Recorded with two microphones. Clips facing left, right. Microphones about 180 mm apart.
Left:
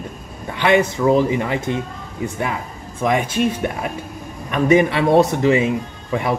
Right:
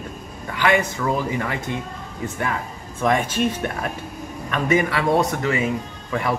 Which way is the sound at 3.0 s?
15° left (ahead or behind).